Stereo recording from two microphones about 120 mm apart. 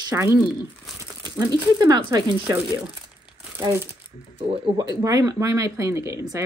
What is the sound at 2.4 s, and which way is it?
Speech, 20° right (ahead or behind).